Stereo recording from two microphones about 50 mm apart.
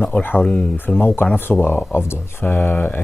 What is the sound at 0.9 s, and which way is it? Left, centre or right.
Speech, left.